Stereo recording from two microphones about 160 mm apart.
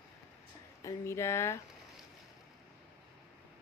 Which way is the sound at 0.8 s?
15° left (ahead or behind).